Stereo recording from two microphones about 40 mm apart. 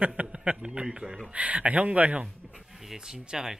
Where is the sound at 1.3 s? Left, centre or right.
Right.